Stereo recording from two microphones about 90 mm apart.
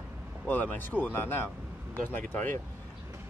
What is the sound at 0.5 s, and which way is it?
Speech, 20° left (ahead or behind).